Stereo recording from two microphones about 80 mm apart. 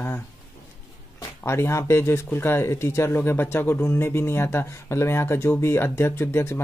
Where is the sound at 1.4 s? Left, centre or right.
Left.